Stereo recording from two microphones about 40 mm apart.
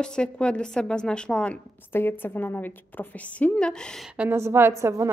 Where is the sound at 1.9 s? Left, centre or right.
Left.